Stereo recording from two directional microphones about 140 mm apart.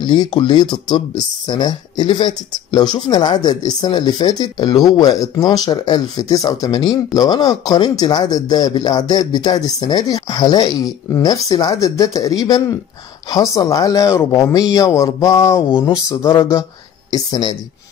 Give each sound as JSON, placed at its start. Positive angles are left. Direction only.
{"t": 0.0, "sound": "speech", "side_deg": 30}